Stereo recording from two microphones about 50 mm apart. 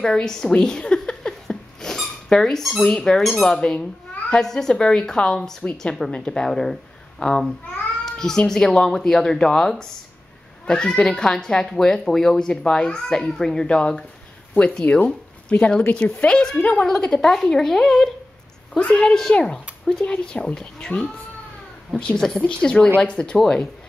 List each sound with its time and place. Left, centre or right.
0.0 s a sound: centre
2.2 s speech: centre
3.5 s speech: centre
14.5 s speech: left
16.5 s speech: left
16.8 s speech: centre